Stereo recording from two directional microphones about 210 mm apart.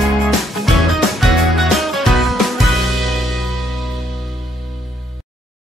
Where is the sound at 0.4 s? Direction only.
Centre (ahead or behind).